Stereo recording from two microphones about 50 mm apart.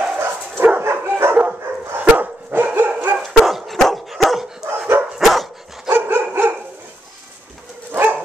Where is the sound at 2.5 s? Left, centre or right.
Right.